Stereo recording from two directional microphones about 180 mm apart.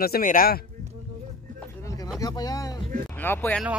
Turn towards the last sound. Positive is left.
turn(degrees=10)  # may be behind; listen again after turning